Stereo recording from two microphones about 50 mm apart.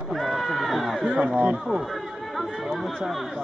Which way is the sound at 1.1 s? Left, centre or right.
Centre.